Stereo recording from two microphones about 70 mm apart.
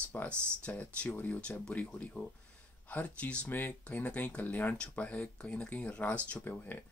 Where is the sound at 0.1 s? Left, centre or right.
Left.